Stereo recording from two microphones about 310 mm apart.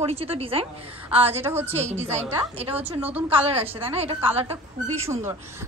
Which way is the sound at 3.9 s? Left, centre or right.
Centre.